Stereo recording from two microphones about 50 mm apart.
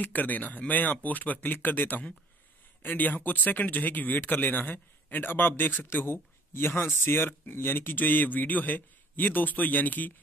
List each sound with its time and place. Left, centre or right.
0.0 s speech: left